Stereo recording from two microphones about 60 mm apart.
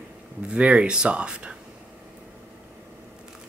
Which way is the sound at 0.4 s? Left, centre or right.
Centre.